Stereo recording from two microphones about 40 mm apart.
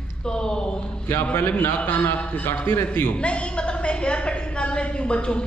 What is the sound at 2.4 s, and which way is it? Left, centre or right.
Speech, left.